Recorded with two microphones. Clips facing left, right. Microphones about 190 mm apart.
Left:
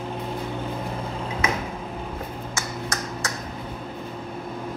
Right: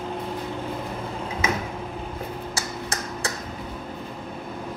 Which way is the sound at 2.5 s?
30° right (ahead or behind).